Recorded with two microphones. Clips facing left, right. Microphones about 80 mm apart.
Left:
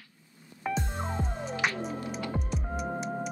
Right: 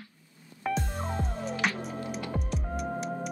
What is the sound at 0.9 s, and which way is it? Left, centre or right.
Music, centre.